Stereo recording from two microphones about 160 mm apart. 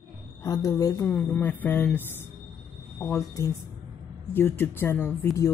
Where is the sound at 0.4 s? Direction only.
20° left (ahead or behind).